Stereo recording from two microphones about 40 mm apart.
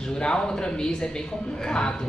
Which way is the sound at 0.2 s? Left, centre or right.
Left.